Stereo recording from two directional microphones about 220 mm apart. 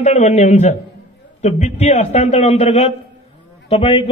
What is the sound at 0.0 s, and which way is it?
A man's voice, 30° left (ahead or behind).